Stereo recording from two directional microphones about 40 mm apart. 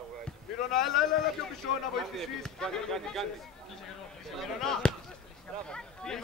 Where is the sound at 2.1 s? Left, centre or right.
Centre.